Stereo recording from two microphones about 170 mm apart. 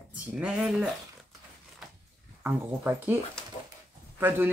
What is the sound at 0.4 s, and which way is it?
Speech, 5° right (ahead or behind).